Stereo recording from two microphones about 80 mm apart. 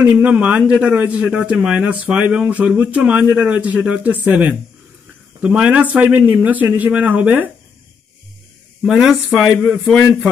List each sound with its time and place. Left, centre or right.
0.0 s a man's voice: centre
8.8 s a man's voice: centre